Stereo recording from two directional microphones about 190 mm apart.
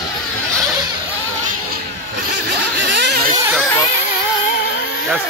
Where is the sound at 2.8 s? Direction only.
65° right (ahead or behind).